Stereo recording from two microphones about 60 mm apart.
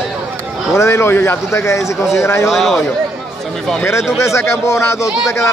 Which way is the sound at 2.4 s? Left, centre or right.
Centre.